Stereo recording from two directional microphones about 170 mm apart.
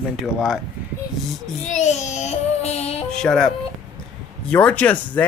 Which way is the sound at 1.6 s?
45° left (ahead or behind).